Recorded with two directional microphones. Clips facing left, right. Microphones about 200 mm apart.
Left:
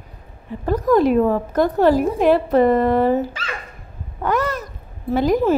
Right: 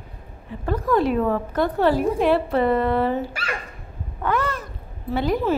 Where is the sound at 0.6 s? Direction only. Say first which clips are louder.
Left 5 dB; 40° left (ahead or behind).